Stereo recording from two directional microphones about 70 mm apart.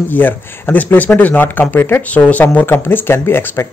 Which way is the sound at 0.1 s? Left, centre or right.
Left.